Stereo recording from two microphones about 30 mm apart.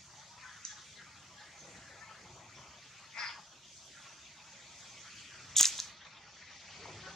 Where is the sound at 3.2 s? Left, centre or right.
Left.